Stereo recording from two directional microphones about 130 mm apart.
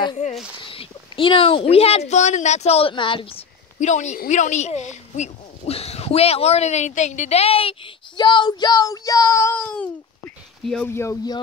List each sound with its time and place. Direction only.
0.6 s speech: 45° left (ahead or behind)
3.8 s speech: 65° left (ahead or behind); by 7.9 s 45° left (ahead or behind)
8.2 s speech: 35° left (ahead or behind)
9.6 s a sound: 10° left (ahead or behind)
10.6 s speech: 5° left (ahead or behind)
10.9 s speech: 20° left (ahead or behind)